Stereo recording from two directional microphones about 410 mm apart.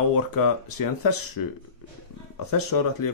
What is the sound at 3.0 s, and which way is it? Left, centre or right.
Speech, left.